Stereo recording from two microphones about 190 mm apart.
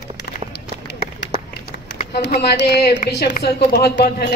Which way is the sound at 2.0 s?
65° left (ahead or behind).